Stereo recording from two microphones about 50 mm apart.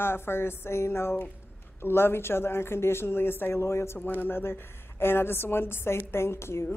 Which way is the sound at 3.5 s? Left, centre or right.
Left.